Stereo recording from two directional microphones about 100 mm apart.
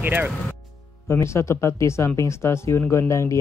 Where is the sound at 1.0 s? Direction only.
25° left (ahead or behind).